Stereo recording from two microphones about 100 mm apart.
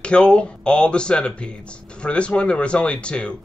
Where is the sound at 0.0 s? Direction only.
10° left (ahead or behind).